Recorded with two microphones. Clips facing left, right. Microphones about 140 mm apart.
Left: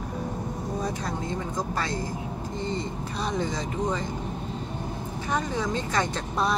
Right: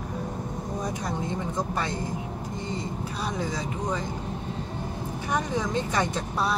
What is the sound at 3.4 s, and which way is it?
Speech, 10° right (ahead or behind).